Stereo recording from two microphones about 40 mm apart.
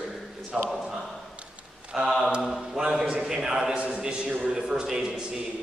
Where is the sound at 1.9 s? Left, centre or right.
Centre.